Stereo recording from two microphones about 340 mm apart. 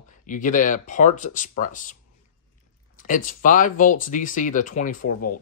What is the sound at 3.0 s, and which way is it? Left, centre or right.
Speech, left.